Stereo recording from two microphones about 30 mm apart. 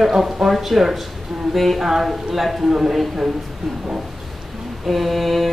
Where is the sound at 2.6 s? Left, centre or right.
Centre.